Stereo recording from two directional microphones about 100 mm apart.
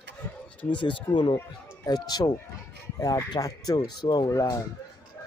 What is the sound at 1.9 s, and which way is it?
Speech, 40° left (ahead or behind).